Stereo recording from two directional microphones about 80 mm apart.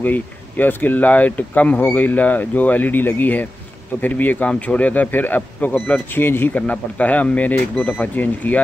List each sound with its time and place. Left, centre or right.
0.0 s speech: left